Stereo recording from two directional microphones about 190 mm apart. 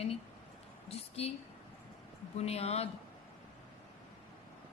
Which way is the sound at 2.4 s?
35° left (ahead or behind).